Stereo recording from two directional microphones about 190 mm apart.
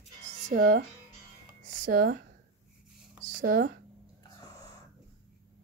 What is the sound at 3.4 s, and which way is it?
Speech, 45° right (ahead or behind).